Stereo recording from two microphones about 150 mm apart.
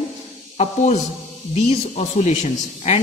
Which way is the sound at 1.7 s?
50° left (ahead or behind).